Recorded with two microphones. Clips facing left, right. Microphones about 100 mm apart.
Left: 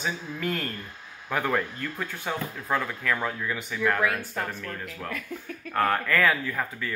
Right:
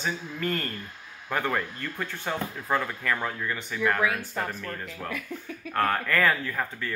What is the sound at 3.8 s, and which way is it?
Speech, 5° right (ahead or behind).